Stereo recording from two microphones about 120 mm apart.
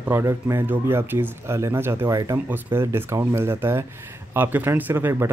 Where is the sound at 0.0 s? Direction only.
20° right (ahead or behind).